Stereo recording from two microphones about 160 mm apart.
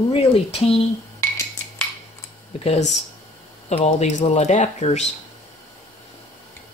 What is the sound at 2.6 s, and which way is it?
Speech, 45° left (ahead or behind).